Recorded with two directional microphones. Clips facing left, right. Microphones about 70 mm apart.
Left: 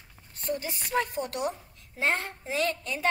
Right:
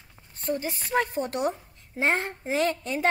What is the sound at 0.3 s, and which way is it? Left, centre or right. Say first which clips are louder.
A woman's voice: right 3 dB; right.